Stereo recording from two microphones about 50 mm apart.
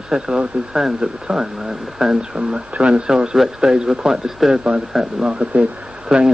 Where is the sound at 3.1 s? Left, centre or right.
Centre.